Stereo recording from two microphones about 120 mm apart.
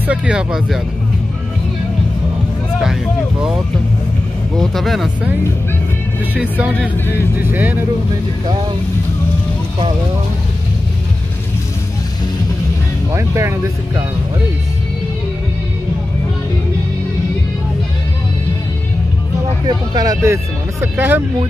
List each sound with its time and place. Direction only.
0.0 s speech: 10° right (ahead or behind)
4.6 s speech: centre (ahead or behind)
7.3 s speech: 15° right (ahead or behind)
13.1 s speech: 25° right (ahead or behind)
19.9 s speech: 30° right (ahead or behind)